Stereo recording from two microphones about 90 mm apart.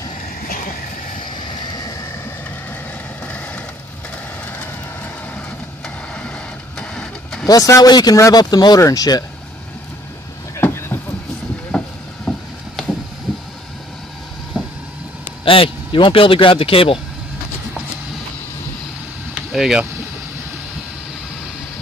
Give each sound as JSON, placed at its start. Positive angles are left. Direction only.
{"t": 1.2, "sound": "vehicle", "side_deg": 55}
{"t": 6.8, "sound": "vehicle", "side_deg": 10}
{"t": 7.4, "sound": "speech", "side_deg": 40}
{"t": 10.6, "sound": "vehicle", "side_deg": 25}
{"t": 12.3, "sound": "vehicle", "side_deg": 5}
{"t": 15.4, "sound": "speech", "side_deg": 80}
{"t": 19.3, "sound": "vehicle", "side_deg": -5}